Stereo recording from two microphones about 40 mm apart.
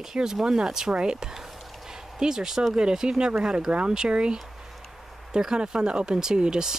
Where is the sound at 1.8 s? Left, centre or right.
Centre.